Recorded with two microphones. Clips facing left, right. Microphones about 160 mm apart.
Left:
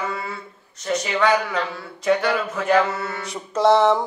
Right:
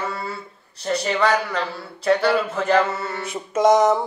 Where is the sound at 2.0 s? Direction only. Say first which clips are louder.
Right 2 dB; centre (ahead or behind).